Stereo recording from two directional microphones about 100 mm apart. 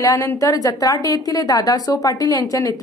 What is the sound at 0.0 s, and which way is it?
A woman's voice, 35° left (ahead or behind).